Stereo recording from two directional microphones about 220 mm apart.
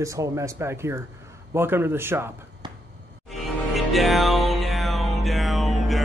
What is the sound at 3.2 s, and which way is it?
Music, centre (ahead or behind).